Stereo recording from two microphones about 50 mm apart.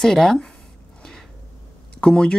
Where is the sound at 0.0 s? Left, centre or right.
Centre.